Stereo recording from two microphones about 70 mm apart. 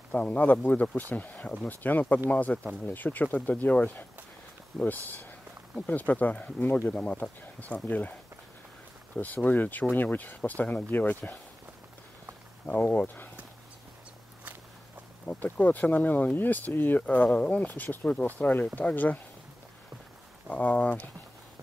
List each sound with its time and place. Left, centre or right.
0.1 s speech: left
9.1 s speech: left
12.8 s speech: left
15.2 s speech: left
20.4 s speech: left